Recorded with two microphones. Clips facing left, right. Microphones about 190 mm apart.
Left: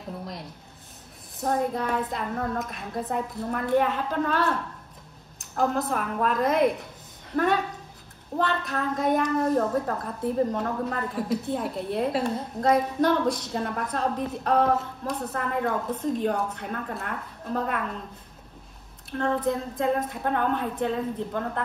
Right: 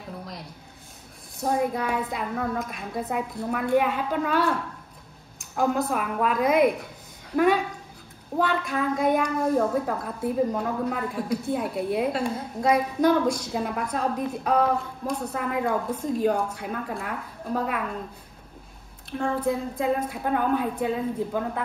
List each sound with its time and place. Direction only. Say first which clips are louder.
1.4 s a woman's voice: right 1 dB; centre (ahead or behind)
5.9 s a woman's voice: right 1 dB; 5° right (ahead or behind)
19.1 s a woman's voice: even; 5° right (ahead or behind)